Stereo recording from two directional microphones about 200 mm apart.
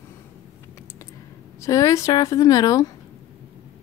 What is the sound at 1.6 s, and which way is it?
Speech, 15° left (ahead or behind).